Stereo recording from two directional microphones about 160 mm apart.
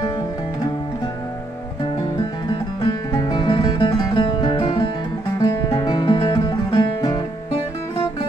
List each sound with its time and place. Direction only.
2.1 s music: 25° left (ahead or behind)